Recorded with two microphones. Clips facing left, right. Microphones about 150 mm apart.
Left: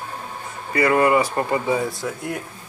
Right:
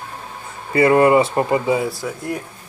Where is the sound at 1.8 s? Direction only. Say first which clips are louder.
Right 2 dB; centre (ahead or behind).